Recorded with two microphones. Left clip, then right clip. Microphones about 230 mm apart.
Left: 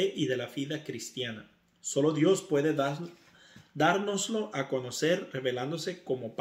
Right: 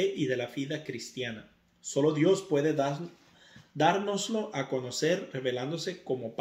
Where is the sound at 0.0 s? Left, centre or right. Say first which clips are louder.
Right 1 dB; centre.